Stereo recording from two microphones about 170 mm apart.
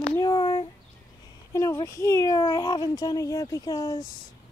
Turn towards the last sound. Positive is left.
turn(degrees=20)  # may be behind; listen again after turning